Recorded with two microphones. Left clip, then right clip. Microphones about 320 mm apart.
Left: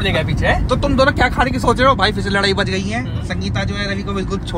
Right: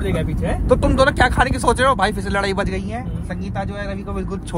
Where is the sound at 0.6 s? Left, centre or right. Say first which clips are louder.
Right 3 dB; right.